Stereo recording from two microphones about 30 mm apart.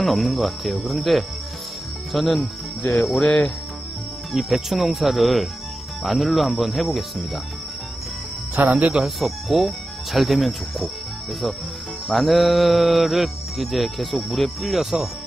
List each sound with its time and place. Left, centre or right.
0.0 s music: centre
3.2 s music: left
4.3 s speech: centre
4.6 s music: centre
8.6 s speech: right
9.0 s music: centre
12.1 s music: centre